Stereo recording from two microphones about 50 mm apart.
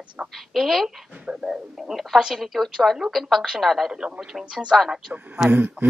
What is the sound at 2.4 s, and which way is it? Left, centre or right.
A woman's voice, centre.